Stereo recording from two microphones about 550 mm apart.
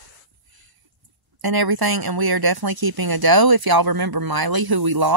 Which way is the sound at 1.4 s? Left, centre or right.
Right.